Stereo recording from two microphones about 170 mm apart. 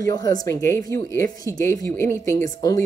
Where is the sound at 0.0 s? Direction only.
20° left (ahead or behind).